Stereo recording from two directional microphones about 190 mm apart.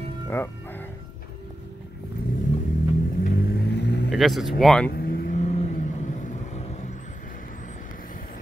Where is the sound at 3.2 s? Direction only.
50° left (ahead or behind).